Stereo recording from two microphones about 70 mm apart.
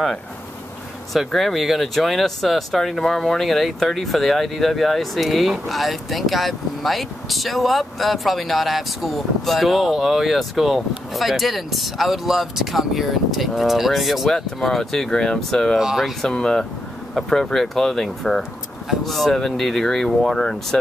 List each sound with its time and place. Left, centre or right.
1.1 s speech: centre
15.8 s speech: centre
16.2 s speech: centre